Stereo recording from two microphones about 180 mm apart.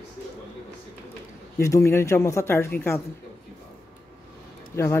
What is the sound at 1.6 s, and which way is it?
Speech, 15° left (ahead or behind).